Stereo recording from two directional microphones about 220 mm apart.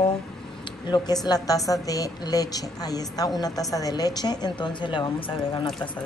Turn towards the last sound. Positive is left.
turn(degrees=20)  # may be behind; listen again after turning